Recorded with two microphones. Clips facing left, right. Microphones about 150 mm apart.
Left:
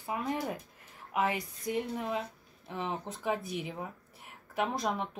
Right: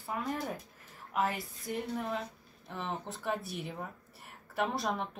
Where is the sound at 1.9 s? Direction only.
15° left (ahead or behind).